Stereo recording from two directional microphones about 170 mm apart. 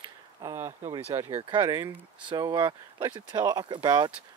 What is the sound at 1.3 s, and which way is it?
Speech, 30° right (ahead or behind).